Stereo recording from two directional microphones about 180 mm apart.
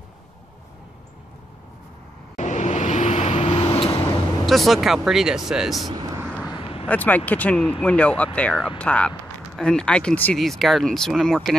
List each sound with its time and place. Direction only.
2.3 s vehicle: 40° left (ahead or behind)
4.5 s speech: centre (ahead or behind)
5.9 s vehicle: 20° right (ahead or behind)
6.5 s vehicle: 30° left (ahead or behind)
6.9 s speech: 10° left (ahead or behind)